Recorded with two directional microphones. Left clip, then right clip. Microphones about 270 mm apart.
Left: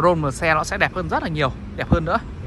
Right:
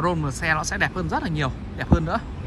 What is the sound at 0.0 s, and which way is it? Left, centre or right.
Speech, centre.